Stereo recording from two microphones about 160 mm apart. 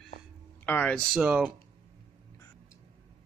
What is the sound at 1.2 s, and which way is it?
Speech, 5° right (ahead or behind).